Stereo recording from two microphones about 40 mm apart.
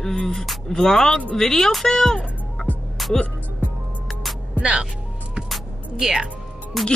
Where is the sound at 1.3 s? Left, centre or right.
Centre.